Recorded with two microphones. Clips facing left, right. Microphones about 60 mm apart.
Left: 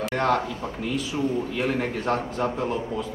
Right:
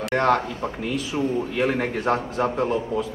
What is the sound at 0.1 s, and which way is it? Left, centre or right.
Speech, right.